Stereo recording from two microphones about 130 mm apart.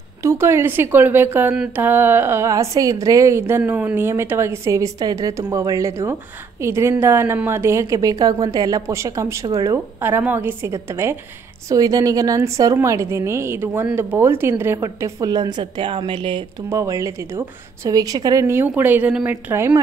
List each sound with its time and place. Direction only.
0.2 s a woman's voice: 20° right (ahead or behind); by 16.4 s 40° right (ahead or behind)
16.6 s a woman's voice: 25° right (ahead or behind)